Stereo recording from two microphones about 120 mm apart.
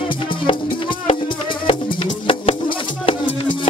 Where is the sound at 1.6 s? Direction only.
50° left (ahead or behind).